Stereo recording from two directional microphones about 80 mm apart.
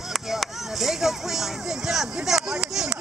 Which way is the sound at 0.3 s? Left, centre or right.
Centre.